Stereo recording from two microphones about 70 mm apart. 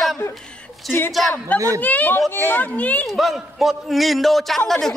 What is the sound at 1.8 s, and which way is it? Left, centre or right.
Speech, left.